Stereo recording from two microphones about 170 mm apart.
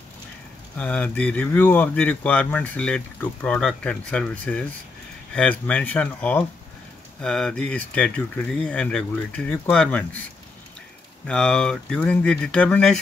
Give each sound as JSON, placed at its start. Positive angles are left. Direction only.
{"t": 0.7, "sound": "speech", "side_deg": 5}
{"t": 11.2, "sound": "speech", "side_deg": 5}